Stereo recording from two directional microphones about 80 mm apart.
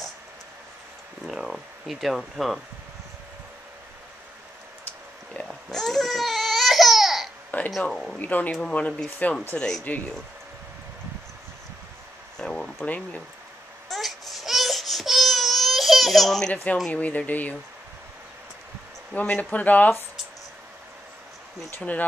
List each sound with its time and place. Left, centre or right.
1.2 s speech: centre
4.8 s baby cry: centre
7.8 s speech: centre
9.6 s speech: centre
12.4 s a sound: centre
12.8 s speech: centre
13.8 s baby cry: centre
16.9 s speech: centre
19.1 s speech: centre
21.7 s speech: centre